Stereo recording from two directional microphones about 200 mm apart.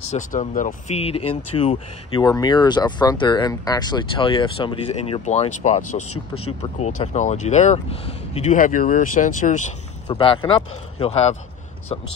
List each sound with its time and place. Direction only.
0.1 s speech: 35° left (ahead or behind)
6.0 s speech: 90° left
6.6 s speech: 35° left (ahead or behind)
10.0 s speech: 25° left (ahead or behind)